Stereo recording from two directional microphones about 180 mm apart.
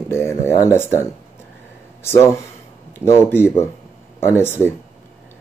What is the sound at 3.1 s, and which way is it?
Speech, 15° left (ahead or behind).